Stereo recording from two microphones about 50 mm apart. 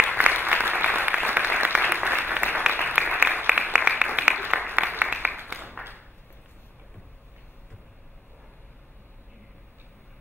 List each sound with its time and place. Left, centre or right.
0.2 s applause: right